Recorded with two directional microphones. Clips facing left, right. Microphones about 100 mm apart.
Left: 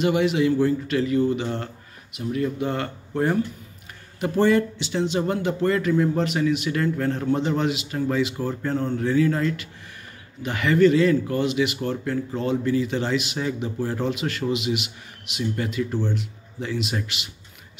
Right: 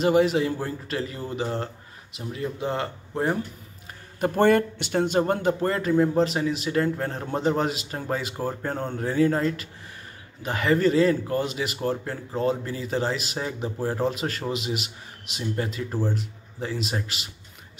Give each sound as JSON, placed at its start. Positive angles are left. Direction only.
{"t": 0.0, "sound": "speech", "side_deg": -35}
{"t": 4.2, "sound": "speech", "side_deg": -50}